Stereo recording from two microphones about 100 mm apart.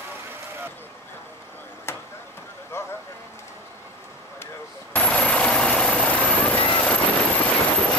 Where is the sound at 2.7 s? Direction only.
25° left (ahead or behind).